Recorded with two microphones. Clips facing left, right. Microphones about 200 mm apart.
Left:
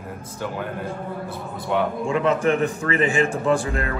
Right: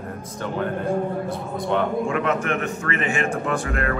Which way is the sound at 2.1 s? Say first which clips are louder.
Left 3 dB; 30° left (ahead or behind).